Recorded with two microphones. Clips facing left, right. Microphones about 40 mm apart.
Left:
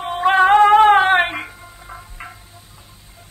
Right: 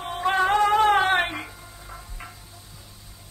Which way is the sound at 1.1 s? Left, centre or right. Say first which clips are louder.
Left 7 dB; left.